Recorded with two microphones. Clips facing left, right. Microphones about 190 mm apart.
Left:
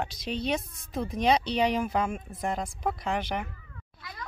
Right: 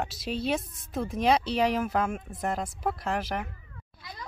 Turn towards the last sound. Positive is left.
turn(degrees=-20)  # may be behind; listen again after turning